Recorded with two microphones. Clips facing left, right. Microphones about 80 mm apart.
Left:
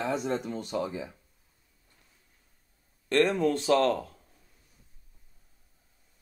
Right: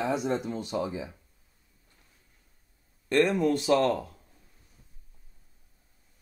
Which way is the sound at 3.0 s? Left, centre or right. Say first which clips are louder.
Right 1 dB; centre.